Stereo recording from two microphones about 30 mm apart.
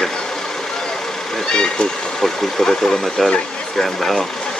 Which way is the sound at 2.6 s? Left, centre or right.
Centre.